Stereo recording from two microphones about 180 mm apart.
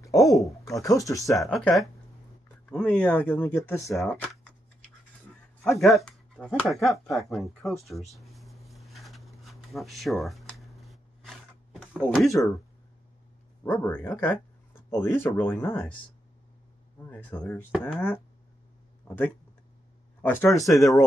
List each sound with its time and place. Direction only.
0.0 s speech: 20° left (ahead or behind)
1.4 s speech: centre (ahead or behind)
3.9 s speech: 5° left (ahead or behind)
5.6 s speech: centre (ahead or behind)
8.1 s a sound: centre (ahead or behind)
12.4 s speech: 10° left (ahead or behind)
13.7 s speech: 10° left (ahead or behind)
17.0 s speech: 10° left (ahead or behind)
20.6 s speech: centre (ahead or behind)